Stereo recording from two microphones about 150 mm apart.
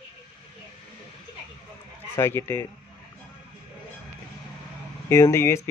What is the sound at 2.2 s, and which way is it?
Speech, 15° left (ahead or behind).